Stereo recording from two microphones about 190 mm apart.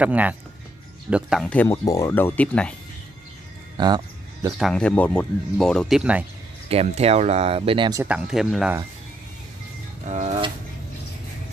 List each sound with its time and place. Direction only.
0.0 s speech: 10° right (ahead or behind)
3.7 s a sound: 20° right (ahead or behind)
4.6 s speech: centre (ahead or behind)
6.7 s speech: 35° right (ahead or behind)
8.0 s speech: 5° right (ahead or behind)
10.0 s music: 40° right (ahead or behind)